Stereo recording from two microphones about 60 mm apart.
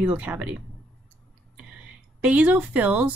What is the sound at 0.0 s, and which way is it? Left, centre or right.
Speech, right.